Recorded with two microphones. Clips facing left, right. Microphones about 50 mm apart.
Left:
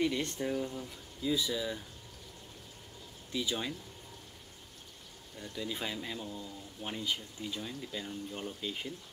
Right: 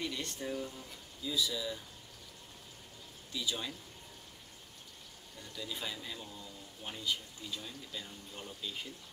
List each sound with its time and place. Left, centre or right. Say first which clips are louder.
0.0 s speech: left 7 dB; left
3.3 s speech: left 3 dB; left
5.4 s speech: left 4 dB; left